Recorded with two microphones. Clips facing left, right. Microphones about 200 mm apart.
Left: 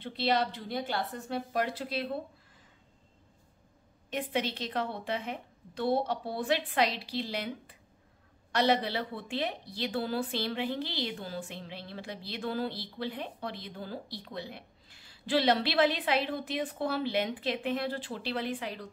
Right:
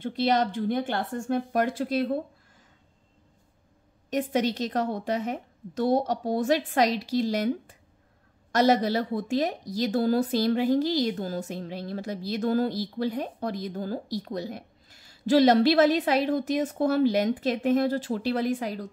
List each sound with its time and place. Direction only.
0.0 s a woman's voice: 45° right (ahead or behind)
4.1 s a woman's voice: 40° right (ahead or behind)